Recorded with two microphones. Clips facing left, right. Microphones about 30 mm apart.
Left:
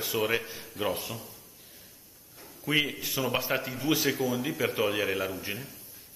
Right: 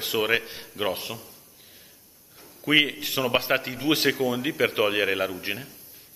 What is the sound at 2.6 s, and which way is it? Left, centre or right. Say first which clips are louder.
Speech: right 6 dB; right.